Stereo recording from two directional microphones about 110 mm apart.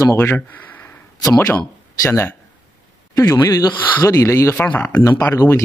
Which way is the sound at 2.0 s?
20° left (ahead or behind).